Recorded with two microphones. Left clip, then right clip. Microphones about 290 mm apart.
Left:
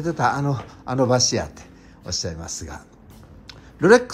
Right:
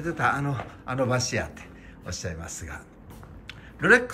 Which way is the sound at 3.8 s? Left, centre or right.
Centre.